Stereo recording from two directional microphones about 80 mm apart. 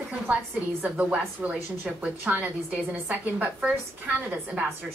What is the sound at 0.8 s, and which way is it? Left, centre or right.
A woman's voice, centre.